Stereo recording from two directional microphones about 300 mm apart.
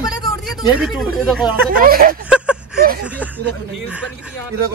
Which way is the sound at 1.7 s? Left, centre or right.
Right.